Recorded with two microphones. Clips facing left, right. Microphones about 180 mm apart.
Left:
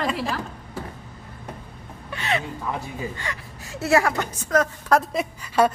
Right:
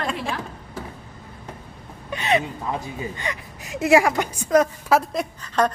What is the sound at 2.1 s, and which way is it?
Gasp, 20° right (ahead or behind).